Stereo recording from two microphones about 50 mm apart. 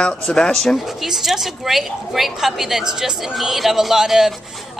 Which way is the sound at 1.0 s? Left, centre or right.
Centre.